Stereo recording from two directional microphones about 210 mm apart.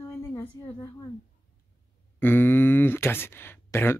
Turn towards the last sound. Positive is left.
turn(degrees=10)  # may be behind; listen again after turning